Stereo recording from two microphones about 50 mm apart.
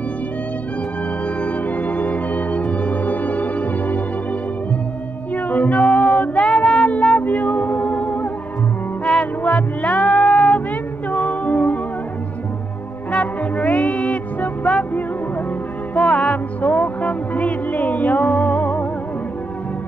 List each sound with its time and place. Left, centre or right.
1.2 s organ: left
5.3 s music: left
6.4 s music: centre
7.2 s music: left
13.1 s music: left